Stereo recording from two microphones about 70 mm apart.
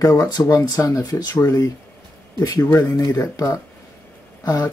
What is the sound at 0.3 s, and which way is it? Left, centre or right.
Speech, left.